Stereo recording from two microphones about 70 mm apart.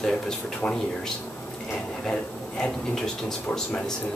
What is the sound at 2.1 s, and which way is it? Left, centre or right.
A man's voice, centre.